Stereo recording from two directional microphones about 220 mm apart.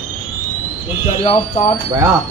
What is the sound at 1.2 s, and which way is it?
Speech, 25° left (ahead or behind).